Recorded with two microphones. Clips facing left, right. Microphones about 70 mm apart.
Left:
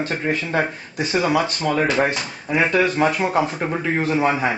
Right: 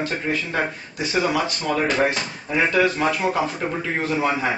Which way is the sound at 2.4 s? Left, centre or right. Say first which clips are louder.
Left 1 dB; left.